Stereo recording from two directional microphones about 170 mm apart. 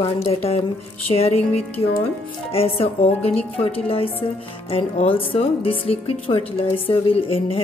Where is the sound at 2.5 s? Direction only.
35° left (ahead or behind).